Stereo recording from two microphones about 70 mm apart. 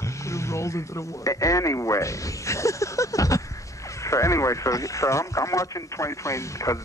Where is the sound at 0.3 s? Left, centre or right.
Left.